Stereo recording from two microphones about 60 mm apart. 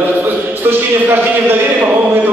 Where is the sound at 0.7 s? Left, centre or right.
Right.